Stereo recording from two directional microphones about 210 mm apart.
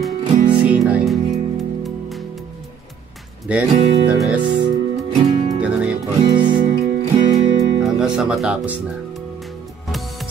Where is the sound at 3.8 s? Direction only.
25° right (ahead or behind).